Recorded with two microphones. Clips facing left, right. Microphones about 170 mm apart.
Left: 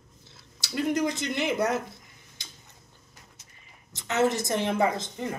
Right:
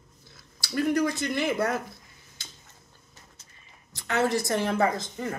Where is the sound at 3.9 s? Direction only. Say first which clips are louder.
Left 1 dB; 20° left (ahead or behind).